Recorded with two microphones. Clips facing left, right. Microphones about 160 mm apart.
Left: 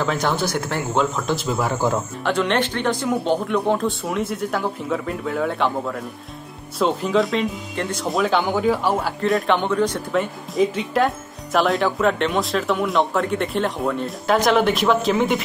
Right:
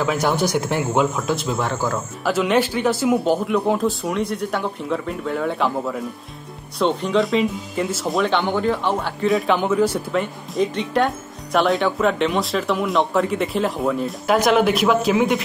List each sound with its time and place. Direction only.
0.0 s speech: 5° right (ahead or behind)
1.7 s speech: 20° left (ahead or behind)
2.2 s speech: 5° right (ahead or behind)